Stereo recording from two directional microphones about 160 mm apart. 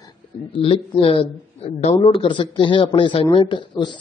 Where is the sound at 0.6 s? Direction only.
35° left (ahead or behind).